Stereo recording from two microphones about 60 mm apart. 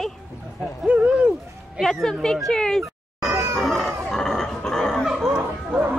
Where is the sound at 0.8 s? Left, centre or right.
Centre.